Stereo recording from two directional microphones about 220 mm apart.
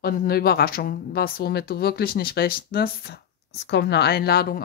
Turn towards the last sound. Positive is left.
turn(degrees=45)  # may be behind; listen again after turning